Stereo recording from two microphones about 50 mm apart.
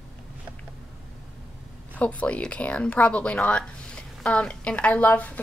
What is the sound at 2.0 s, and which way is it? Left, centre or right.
A woman's voice, left.